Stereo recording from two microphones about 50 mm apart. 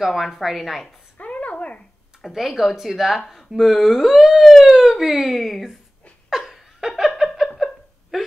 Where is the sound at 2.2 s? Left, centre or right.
Centre.